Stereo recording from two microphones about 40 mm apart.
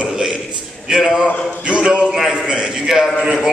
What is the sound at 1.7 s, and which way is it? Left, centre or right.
A man's voice, right.